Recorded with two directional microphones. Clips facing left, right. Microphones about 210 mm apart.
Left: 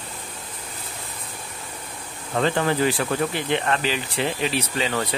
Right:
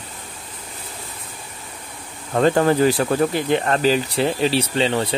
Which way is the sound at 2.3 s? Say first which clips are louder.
Right 6 dB; 40° right (ahead or behind).